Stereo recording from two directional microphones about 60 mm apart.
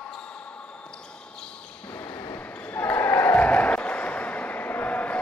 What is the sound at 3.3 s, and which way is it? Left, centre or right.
Applause, left.